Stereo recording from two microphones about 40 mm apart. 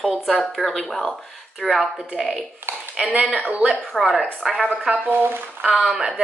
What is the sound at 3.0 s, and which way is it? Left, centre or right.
Speech, right.